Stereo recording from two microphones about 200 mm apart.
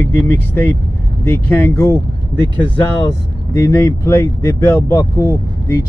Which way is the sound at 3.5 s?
15° left (ahead or behind).